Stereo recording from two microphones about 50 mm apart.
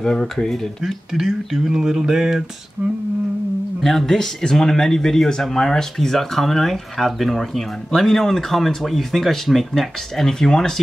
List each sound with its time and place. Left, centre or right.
0.0 s speech: centre
1.7 s a sound: centre
2.8 s humming: right
3.8 s speech: centre